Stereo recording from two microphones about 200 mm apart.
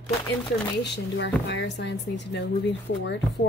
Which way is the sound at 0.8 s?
60° left (ahead or behind).